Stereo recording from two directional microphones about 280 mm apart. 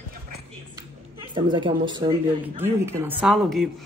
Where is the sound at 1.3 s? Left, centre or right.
Centre.